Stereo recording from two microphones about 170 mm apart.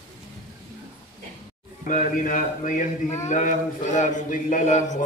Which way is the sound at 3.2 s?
45° left (ahead or behind).